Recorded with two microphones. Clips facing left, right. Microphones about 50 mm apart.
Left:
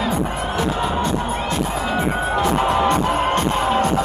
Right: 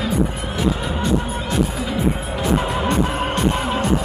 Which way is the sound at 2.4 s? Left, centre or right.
Left.